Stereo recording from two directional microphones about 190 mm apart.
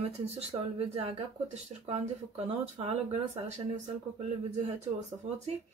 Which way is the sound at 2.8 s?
25° right (ahead or behind).